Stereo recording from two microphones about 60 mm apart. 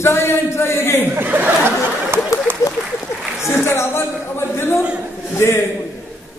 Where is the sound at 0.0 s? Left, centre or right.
Left.